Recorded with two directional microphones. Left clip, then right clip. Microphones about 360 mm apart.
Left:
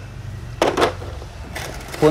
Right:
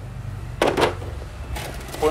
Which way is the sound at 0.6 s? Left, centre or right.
Centre.